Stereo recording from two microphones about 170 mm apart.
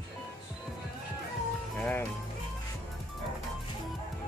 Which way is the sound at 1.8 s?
10° left (ahead or behind).